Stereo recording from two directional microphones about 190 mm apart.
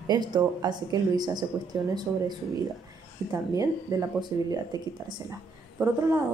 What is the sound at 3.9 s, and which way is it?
Speech, 20° right (ahead or behind).